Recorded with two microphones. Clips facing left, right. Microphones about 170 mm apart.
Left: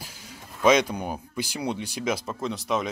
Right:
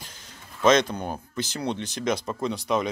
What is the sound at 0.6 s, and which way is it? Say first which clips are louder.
Speech: even; 10° left (ahead or behind).